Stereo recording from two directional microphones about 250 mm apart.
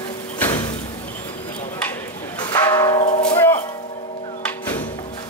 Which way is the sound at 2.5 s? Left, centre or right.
Centre.